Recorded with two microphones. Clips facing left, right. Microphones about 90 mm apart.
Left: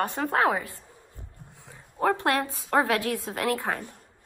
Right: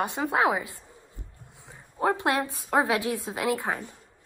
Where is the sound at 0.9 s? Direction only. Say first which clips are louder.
Even; 20° left (ahead or behind).